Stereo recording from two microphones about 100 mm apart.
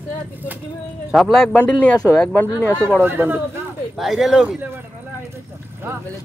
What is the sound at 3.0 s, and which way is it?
Speech, 20° right (ahead or behind).